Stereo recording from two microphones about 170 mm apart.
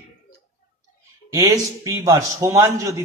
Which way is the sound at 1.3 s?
20° right (ahead or behind).